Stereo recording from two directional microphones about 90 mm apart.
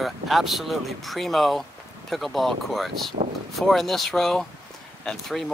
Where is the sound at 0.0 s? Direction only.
Centre (ahead or behind).